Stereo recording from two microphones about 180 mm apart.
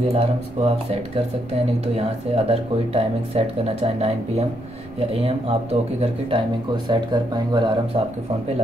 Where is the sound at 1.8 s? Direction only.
35° right (ahead or behind).